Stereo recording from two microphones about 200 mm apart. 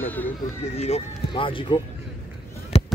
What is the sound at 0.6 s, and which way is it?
Speech, 35° left (ahead or behind).